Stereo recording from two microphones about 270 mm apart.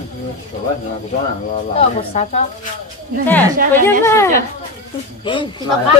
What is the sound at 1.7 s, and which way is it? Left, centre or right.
Speech, left.